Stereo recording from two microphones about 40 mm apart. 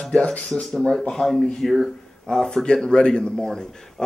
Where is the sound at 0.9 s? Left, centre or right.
Centre.